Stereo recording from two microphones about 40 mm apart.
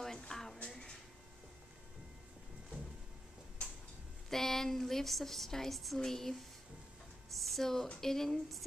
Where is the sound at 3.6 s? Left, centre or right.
Left.